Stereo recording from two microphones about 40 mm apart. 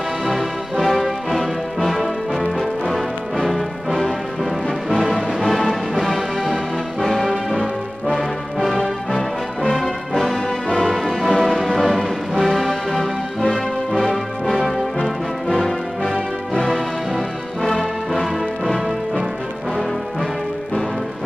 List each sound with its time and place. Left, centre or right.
0.2 s music: centre
5.1 s music: centre
7.0 s music: centre
9.1 s music: centre
9.8 s music: centre
18.1 s music: centre